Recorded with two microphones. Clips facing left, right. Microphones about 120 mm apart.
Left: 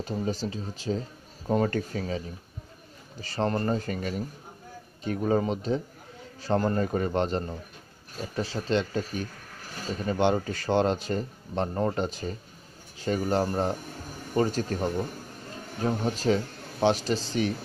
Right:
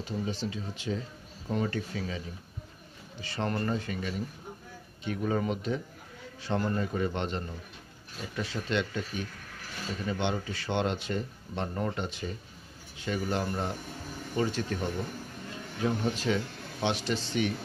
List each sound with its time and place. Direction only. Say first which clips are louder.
0.0 s speech: left 4 dB; 40° left (ahead or behind)